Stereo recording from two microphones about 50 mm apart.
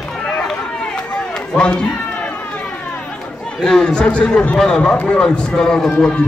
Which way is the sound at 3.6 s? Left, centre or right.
Centre.